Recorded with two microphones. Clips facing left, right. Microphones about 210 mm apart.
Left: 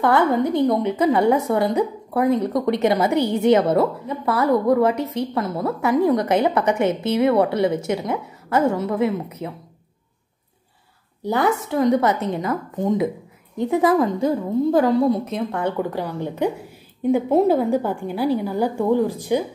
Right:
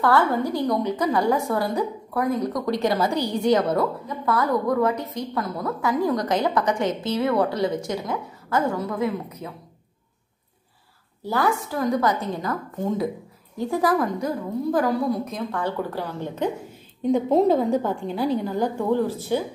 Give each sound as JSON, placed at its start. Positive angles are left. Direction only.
{"t": 0.0, "sound": "a woman's voice", "side_deg": 20}
{"t": 5.1, "sound": "a woman's voice", "side_deg": 25}
{"t": 6.8, "sound": "a woman's voice", "side_deg": 60}
{"t": 7.1, "sound": "a woman's voice", "side_deg": 20}
{"t": 11.2, "sound": "a woman's voice", "side_deg": 20}